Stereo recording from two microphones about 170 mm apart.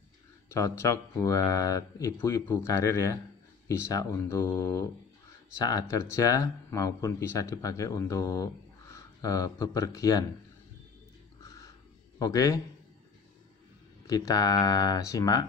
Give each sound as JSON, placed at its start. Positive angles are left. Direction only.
{"t": 0.5, "sound": "speech", "side_deg": 20}
{"t": 12.2, "sound": "speech", "side_deg": 20}
{"t": 14.0, "sound": "speech", "side_deg": 20}